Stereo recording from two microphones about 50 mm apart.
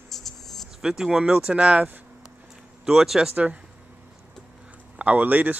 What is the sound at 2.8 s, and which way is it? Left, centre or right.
Speech, centre.